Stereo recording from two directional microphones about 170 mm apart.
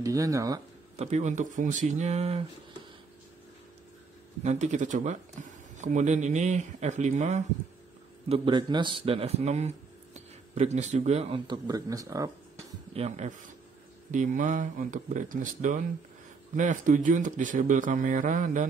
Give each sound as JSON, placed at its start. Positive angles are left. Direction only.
{"t": 0.0, "sound": "speech", "side_deg": -20}
{"t": 0.9, "sound": "speech", "side_deg": -40}
{"t": 4.4, "sound": "speech", "side_deg": -40}
{"t": 8.3, "sound": "speech", "side_deg": -25}
{"t": 12.9, "sound": "speech", "side_deg": -40}